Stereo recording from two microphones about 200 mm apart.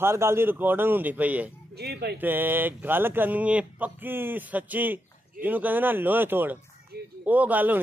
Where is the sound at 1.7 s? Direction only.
55° right (ahead or behind).